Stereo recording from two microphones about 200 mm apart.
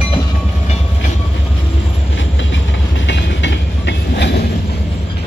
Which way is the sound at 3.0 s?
65° left (ahead or behind).